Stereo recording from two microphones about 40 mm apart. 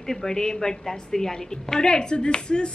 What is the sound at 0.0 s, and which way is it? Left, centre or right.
A woman's voice, centre.